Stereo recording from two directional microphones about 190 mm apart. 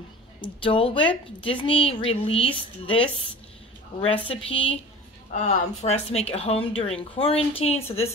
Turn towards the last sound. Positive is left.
turn(degrees=30)  # may be behind; listen again after turning